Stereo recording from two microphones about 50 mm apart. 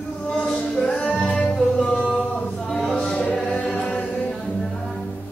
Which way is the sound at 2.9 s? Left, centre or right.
Centre.